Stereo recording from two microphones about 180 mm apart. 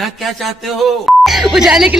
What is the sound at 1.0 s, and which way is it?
Speech, centre (ahead or behind).